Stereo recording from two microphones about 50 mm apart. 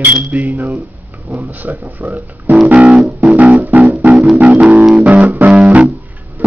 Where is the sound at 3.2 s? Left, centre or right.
Right.